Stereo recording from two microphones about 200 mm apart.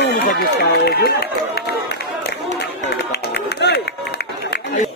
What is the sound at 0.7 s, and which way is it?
Speech, 55° left (ahead or behind).